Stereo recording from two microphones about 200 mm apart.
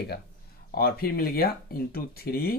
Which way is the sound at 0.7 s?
50° left (ahead or behind).